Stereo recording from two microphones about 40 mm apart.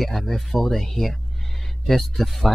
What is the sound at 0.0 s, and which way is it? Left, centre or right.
Speech, centre.